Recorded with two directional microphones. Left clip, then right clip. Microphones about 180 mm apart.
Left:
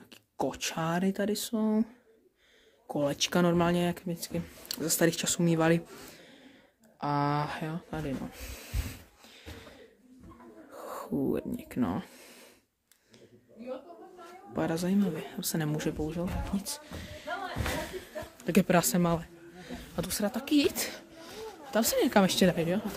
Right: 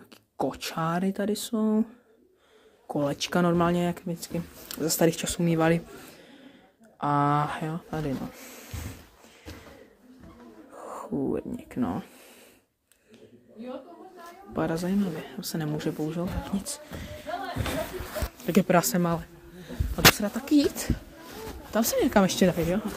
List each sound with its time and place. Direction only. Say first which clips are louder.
0.1 s speech: right 3 dB; 10° left (ahead or behind)
2.9 s speech: right 2 dB; 5° left (ahead or behind)
7.0 s speech: right 5 dB; 5° left (ahead or behind)
8.3 s bee: right 1 dB; 15° left (ahead or behind)
10.7 s a sound: right 2 dB; 20° left (ahead or behind)
14.5 s speech: right 2 dB; 10° left (ahead or behind)
15.0 s speech: right 1 dB; 25° left (ahead or behind)
16.0 s speech: right 3 dB; centre (ahead or behind)
20.7 s speech: right 2 dB; 25° left (ahead or behind)
21.6 s speech: right 2 dB; centre (ahead or behind)